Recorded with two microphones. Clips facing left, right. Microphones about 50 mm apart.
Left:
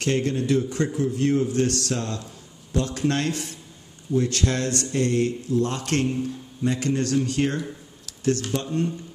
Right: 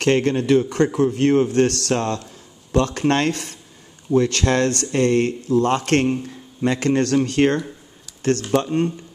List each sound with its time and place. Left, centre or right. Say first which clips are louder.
0.0 s a man's voice: right 6 dB; right
6.6 s a man's voice: right 5 dB; right